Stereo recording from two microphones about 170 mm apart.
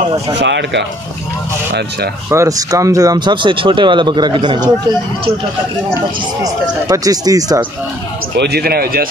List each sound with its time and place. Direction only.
0.4 s speech: 90° right
2.2 s speech: 15° right (ahead or behind)
6.4 s speech: 20° right (ahead or behind)
8.4 s speech: 70° right (ahead or behind)